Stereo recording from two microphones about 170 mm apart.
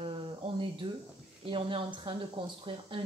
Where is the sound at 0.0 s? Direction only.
30° right (ahead or behind).